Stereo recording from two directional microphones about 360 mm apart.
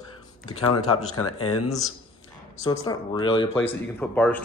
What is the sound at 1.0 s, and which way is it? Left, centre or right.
Speech, left.